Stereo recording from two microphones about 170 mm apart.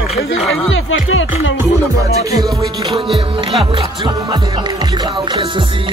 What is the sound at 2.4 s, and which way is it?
Music, 20° right (ahead or behind).